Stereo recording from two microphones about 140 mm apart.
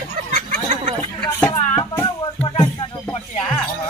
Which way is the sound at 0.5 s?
65° right (ahead or behind).